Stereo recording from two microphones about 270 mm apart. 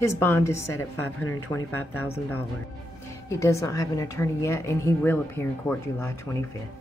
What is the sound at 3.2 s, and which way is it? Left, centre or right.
A woman's voice, centre.